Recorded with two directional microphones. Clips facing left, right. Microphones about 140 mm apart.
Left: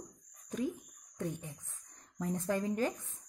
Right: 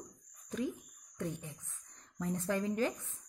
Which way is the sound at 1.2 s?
25° left (ahead or behind).